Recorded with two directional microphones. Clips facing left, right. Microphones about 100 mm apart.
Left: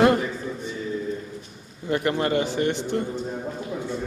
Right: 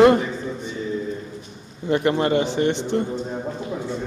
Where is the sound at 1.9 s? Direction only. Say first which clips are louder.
Right 4 dB; 25° right (ahead or behind).